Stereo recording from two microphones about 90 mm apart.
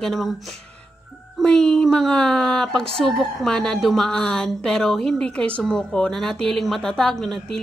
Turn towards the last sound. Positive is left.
turn(degrees=5)  # may be behind; listen again after turning